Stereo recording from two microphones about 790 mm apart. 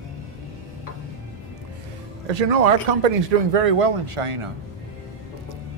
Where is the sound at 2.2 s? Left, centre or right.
Right.